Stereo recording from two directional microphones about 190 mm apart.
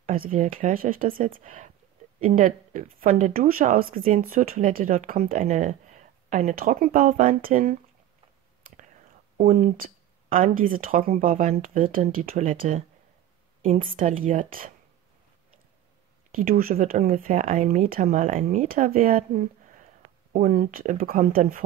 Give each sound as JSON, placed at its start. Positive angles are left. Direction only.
{"t": 0.0, "sound": "speech", "side_deg": -45}
{"t": 8.6, "sound": "whispering", "side_deg": -50}
{"t": 9.4, "sound": "a woman's voice", "side_deg": -45}
{"t": 16.3, "sound": "speech", "side_deg": -50}